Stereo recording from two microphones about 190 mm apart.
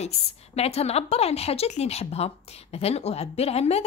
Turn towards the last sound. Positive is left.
turn(degrees=35)  # may be behind; listen again after turning